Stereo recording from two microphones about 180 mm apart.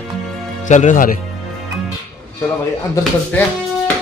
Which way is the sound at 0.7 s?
45° left (ahead or behind).